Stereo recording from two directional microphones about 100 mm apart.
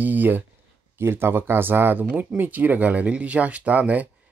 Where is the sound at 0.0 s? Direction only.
20° right (ahead or behind).